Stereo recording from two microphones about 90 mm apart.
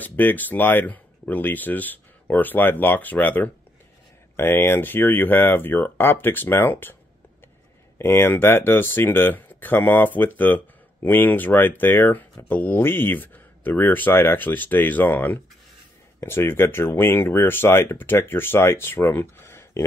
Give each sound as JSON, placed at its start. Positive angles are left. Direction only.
{"t": 0.0, "sound": "speech", "side_deg": 20}
{"t": 8.0, "sound": "speech", "side_deg": 25}